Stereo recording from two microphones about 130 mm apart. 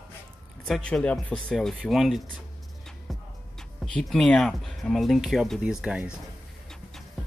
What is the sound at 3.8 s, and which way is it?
Speech, 5° left (ahead or behind).